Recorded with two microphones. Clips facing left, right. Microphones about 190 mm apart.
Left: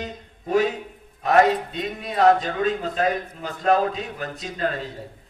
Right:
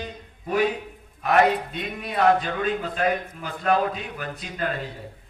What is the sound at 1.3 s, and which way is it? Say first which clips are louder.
A man's voice: left 2 dB; 40° left (ahead or behind).